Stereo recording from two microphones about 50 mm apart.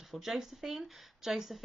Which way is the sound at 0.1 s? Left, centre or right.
Centre.